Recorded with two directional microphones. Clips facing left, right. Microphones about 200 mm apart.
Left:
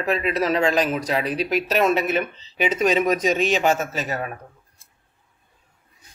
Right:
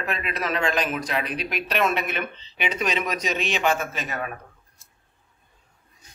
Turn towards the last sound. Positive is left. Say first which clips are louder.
# left 4 dB
turn(degrees=35)  # may be behind; listen again after turning